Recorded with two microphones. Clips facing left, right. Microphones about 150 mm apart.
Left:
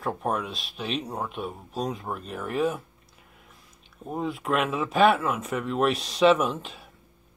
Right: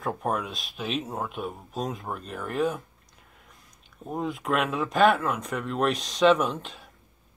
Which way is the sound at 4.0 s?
Centre (ahead or behind).